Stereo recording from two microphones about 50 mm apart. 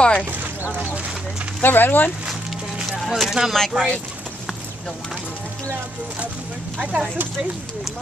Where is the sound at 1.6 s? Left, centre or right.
Left.